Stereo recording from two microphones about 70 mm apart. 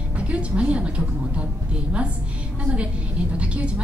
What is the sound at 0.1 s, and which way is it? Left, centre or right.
A woman's voice, centre.